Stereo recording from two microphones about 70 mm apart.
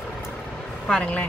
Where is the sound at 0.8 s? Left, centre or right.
Centre.